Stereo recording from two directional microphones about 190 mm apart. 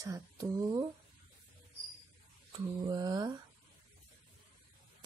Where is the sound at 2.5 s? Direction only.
20° right (ahead or behind).